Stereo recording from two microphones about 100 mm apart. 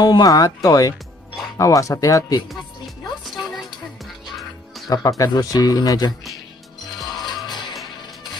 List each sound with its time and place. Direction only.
0.0 s speech: 40° left (ahead or behind)
3.5 s music: centre (ahead or behind)
4.8 s speech: 40° left (ahead or behind)
7.2 s music: 50° left (ahead or behind)